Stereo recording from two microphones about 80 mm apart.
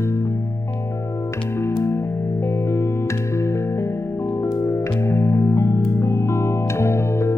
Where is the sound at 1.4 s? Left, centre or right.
Left.